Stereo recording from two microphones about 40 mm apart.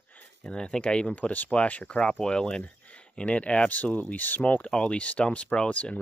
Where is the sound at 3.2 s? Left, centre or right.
Left.